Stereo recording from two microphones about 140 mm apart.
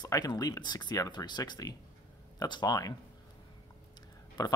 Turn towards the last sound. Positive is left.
turn(degrees=30)  # may be behind; listen again after turning